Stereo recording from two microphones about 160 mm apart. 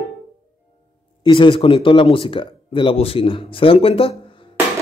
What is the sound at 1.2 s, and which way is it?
Speech, 30° left (ahead or behind).